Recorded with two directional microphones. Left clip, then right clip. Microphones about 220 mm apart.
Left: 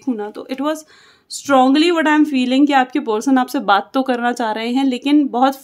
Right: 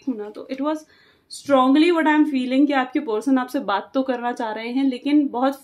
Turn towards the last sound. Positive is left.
turn(degrees=50)  # may be behind; listen again after turning